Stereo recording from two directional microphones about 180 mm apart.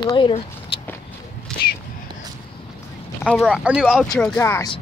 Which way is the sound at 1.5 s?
Centre (ahead or behind).